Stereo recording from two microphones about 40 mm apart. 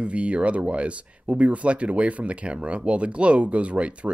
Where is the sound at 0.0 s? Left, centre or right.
Right.